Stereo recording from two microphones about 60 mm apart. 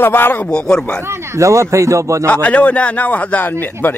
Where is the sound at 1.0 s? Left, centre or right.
Right.